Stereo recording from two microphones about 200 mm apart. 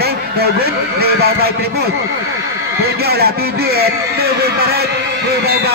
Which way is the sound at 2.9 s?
50° right (ahead or behind).